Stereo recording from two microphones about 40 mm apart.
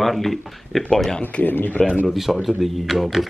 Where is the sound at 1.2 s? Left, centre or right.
Left.